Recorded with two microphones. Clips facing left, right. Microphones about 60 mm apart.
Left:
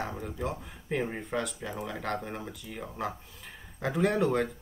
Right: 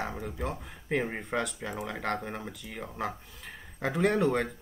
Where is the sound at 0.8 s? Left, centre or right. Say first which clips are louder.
Right 1 dB; centre.